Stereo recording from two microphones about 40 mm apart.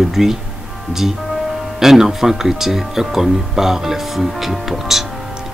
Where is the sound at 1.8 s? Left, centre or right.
Centre.